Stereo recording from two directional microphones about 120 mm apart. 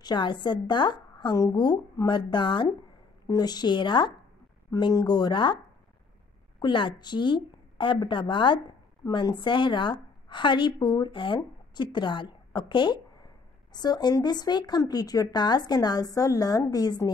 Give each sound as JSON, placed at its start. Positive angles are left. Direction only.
{"t": 0.0, "sound": "a woman's voice", "side_deg": 40}
{"t": 6.6, "sound": "a woman's voice", "side_deg": 40}